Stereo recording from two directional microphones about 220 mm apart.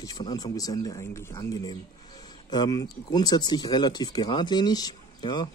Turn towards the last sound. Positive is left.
turn(degrees=20)  # may be behind; listen again after turning